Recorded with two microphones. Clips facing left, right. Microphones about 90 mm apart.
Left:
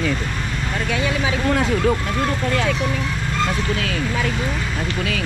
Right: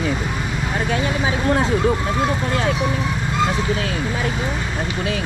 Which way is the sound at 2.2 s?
20° right (ahead or behind).